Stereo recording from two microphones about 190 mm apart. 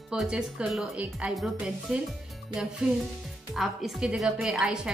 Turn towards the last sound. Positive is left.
turn(degrees=-5)  # may be behind; listen again after turning